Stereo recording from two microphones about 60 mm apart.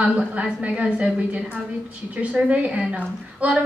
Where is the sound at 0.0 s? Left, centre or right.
Right.